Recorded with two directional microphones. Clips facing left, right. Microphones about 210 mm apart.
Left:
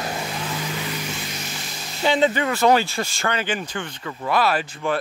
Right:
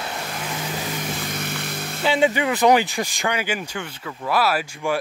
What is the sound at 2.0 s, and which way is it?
Speech, 10° right (ahead or behind).